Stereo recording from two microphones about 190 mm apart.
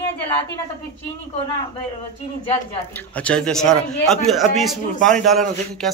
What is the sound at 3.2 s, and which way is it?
A man's voice, 5° left (ahead or behind).